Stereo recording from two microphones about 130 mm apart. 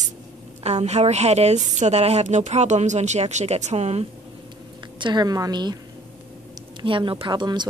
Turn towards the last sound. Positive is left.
turn(degrees=-35)  # may be behind; listen again after turning